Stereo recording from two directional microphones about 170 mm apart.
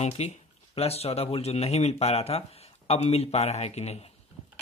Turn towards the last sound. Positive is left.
turn(degrees=40)  # may be behind; listen again after turning